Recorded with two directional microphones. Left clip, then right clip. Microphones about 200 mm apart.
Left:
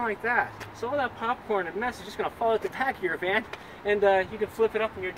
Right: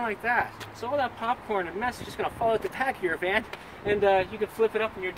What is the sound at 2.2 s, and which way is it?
Speech, 20° right (ahead or behind).